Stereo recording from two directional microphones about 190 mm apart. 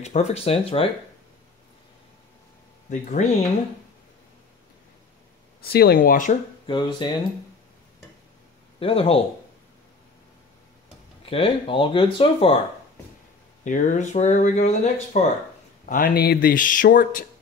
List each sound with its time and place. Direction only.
0.0 s speech: 35° left (ahead or behind)
2.9 s speech: 40° left (ahead or behind)
5.6 s speech: 55° left (ahead or behind)
6.7 s speech: 25° left (ahead or behind)
8.7 s speech: 30° left (ahead or behind)
11.2 s speech: 30° left (ahead or behind)
13.7 s speech: 40° left (ahead or behind)
15.8 s speech: 45° left (ahead or behind)